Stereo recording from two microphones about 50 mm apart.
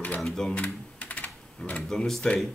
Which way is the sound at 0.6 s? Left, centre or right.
Left.